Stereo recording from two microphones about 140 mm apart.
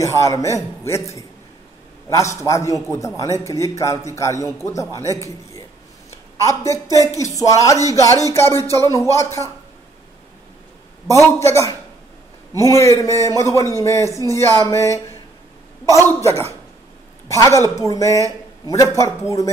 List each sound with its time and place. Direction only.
0.0 s a man's voice: 20° left (ahead or behind)
2.7 s a man's voice: 25° left (ahead or behind)
6.4 s a man's voice: 20° left (ahead or behind)
11.3 s a man's voice: 20° left (ahead or behind)